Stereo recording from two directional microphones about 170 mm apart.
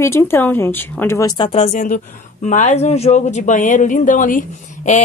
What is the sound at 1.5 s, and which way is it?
A woman's voice, 40° left (ahead or behind).